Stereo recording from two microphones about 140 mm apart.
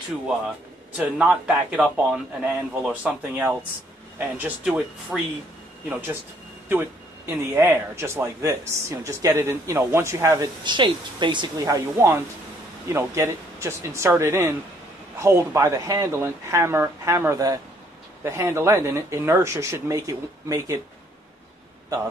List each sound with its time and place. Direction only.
0.9 s a man's voice: 5° right (ahead or behind); by 20.8 s 20° right (ahead or behind)